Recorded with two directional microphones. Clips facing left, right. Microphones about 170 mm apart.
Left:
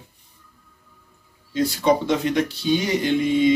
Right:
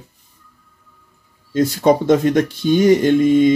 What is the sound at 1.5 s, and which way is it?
Speech, 45° right (ahead or behind).